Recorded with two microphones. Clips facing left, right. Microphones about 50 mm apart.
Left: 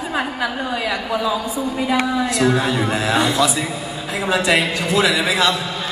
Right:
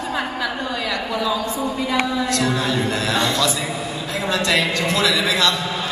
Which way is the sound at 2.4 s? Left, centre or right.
Centre.